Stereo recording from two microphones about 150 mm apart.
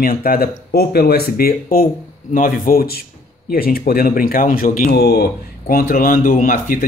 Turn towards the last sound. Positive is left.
turn(degrees=70)  # may be behind; listen again after turning